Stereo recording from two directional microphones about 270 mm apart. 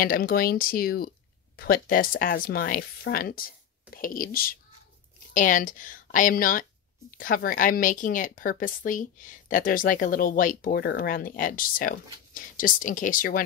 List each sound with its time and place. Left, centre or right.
0.0 s speech: left